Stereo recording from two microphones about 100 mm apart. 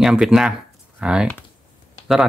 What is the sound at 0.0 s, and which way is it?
Speech, 5° right (ahead or behind).